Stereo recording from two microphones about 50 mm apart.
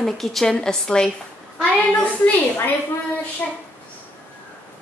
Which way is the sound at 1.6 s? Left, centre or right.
Left.